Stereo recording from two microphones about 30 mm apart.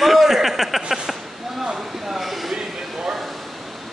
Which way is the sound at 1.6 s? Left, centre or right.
Centre.